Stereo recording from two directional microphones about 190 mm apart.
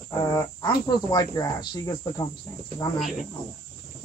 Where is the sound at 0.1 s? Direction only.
20° left (ahead or behind).